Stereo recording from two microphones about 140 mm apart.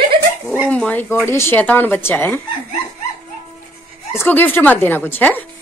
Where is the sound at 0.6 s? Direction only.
10° left (ahead or behind).